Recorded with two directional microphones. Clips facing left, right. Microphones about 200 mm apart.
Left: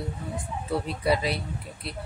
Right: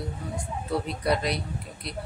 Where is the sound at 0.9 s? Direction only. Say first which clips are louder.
Left 2 dB; 5° left (ahead or behind).